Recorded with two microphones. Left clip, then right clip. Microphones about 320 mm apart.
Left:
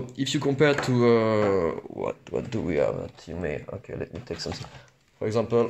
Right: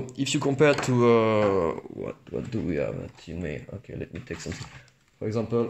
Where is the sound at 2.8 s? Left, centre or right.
Left.